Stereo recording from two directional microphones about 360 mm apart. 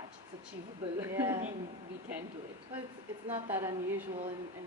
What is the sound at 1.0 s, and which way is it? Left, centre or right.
Speech, centre.